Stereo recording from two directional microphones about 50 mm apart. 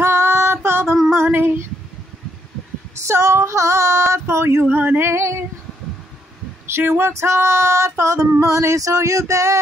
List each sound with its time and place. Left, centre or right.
0.0 s child singing: right
0.7 s a sound: right
1.1 s female singing: right
3.1 s female singing: right
4.6 s female singing: right
6.8 s a sound: right
7.1 s female singing: right